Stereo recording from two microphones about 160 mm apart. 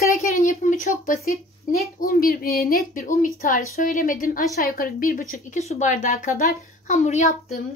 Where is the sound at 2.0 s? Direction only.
65° left (ahead or behind).